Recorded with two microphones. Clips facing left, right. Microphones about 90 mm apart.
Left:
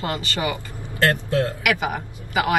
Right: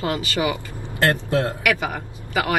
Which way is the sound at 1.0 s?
20° right (ahead or behind).